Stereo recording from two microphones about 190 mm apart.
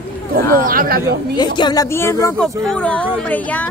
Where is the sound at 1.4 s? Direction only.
20° left (ahead or behind).